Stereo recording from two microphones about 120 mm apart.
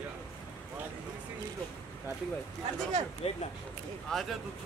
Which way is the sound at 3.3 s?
55° left (ahead or behind).